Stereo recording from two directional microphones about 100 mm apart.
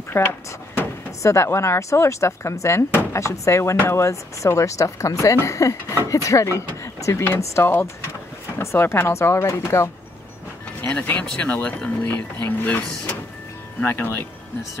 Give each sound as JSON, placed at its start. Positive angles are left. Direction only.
{"t": 0.1, "sound": "speech", "side_deg": 25}